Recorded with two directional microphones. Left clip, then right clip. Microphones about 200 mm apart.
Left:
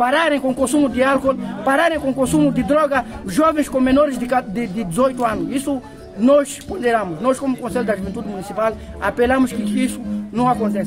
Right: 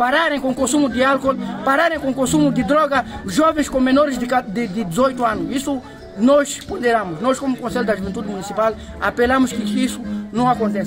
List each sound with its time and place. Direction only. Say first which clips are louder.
0.0 s speech: left 1 dB; centre (ahead or behind)